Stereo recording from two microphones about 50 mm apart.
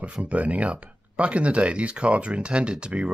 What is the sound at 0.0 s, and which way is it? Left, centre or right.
Speech, right.